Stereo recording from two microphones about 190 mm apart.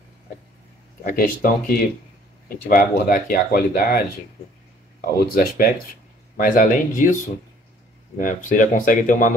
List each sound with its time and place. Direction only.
1.0 s speech: 50° left (ahead or behind)
5.0 s speech: 50° left (ahead or behind)
8.2 s speech: 45° left (ahead or behind)